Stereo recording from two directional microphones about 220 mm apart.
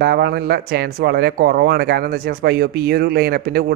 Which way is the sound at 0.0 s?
50° right (ahead or behind).